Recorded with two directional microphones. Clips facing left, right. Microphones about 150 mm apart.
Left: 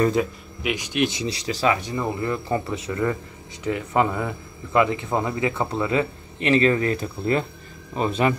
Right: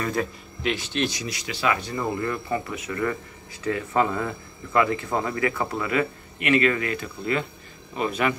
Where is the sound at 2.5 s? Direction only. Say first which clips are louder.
Left 3 dB; 30° left (ahead or behind).